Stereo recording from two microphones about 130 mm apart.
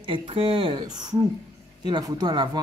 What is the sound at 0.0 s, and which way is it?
Speech, 40° right (ahead or behind).